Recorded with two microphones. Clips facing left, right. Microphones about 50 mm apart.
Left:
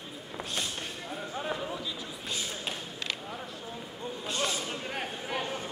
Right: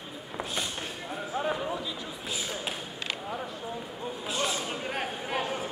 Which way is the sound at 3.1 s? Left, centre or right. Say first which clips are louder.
Right 4 dB; centre.